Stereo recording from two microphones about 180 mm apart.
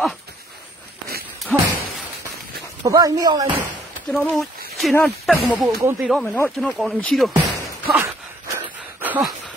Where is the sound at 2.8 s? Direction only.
20° right (ahead or behind).